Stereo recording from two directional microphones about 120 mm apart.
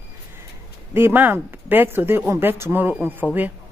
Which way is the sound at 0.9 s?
15° right (ahead or behind).